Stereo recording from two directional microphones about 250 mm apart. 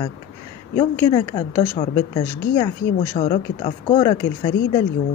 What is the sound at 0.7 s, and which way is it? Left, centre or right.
A woman's voice, centre.